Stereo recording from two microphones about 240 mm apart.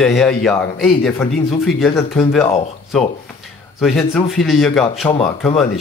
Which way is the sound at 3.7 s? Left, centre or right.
Centre.